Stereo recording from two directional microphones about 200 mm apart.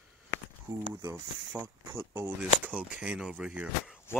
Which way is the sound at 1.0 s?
10° right (ahead or behind).